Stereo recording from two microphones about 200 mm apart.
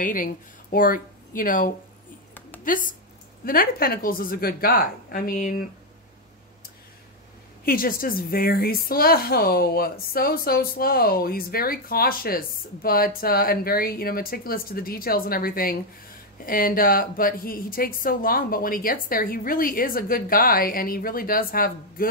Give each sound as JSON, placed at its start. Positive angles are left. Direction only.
{"t": 0.0, "sound": "speech", "side_deg": 45}
{"t": 7.6, "sound": "speech", "side_deg": 45}